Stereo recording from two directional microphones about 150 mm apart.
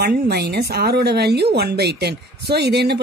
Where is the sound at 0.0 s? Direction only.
90° right.